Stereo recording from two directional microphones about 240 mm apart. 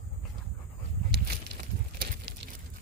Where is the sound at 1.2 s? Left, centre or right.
Right.